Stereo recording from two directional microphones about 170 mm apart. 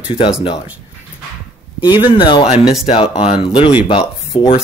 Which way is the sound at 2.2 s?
30° left (ahead or behind).